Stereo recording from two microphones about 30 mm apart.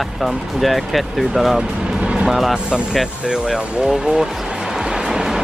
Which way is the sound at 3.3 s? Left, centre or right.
Right.